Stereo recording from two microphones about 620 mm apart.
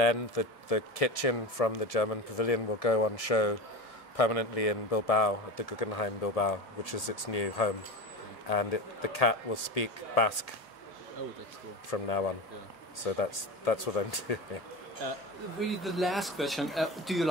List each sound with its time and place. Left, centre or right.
0.0 s speech: left
11.9 s speech: left
15.7 s speech: centre